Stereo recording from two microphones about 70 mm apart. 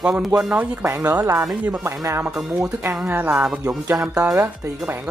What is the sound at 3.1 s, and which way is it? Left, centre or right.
Speech, right.